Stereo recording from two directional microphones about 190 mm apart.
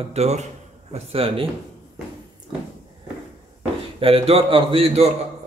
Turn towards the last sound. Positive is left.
turn(degrees=-30)  # may be behind; listen again after turning